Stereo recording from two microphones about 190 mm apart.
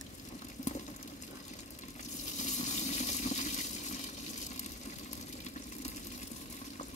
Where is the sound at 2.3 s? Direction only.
40° left (ahead or behind).